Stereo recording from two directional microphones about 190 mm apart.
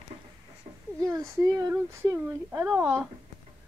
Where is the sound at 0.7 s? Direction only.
35° right (ahead or behind).